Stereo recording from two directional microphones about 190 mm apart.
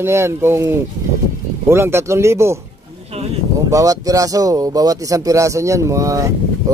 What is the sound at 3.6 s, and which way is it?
Speech, 20° right (ahead or behind).